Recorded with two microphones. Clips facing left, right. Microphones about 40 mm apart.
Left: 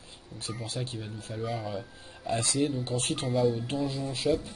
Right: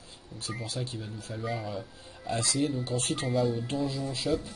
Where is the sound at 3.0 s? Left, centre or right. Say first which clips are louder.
Even; left.